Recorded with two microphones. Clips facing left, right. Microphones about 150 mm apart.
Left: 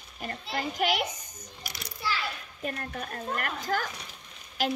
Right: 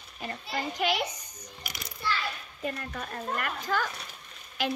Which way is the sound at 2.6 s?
45° left (ahead or behind).